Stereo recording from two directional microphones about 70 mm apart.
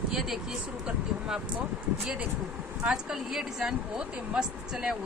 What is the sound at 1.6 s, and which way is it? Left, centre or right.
Speech, right.